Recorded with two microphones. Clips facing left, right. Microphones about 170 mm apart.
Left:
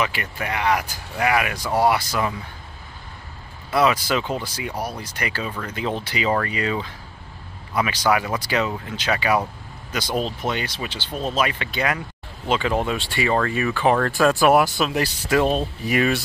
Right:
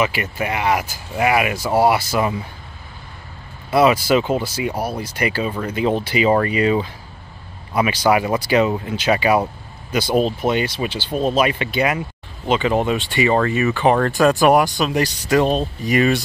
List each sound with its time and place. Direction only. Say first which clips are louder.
0.0 s speech: right 5 dB; 15° right (ahead or behind)
3.7 s speech: right 5 dB; 10° right (ahead or behind)
5.5 s speech: right 6 dB; 30° right (ahead or behind)
5.8 s speech: right 7 dB; 10° right (ahead or behind); by 16.2 s 5° left (ahead or behind)